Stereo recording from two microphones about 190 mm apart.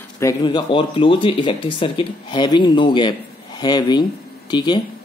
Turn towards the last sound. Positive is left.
turn(degrees=25)  # may be behind; listen again after turning